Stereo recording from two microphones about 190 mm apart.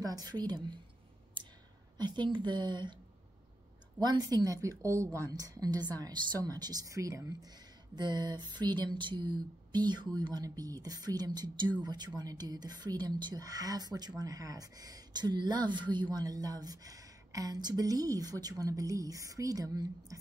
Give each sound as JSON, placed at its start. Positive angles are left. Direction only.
{"t": 0.0, "sound": "a woman's voice", "side_deg": -20}
{"t": 1.4, "sound": "clicking", "side_deg": -25}
{"t": 2.0, "sound": "a woman's voice", "side_deg": -25}
{"t": 4.0, "sound": "a woman's voice", "side_deg": -20}